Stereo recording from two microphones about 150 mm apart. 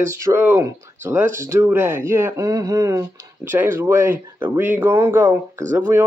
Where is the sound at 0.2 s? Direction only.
15° right (ahead or behind).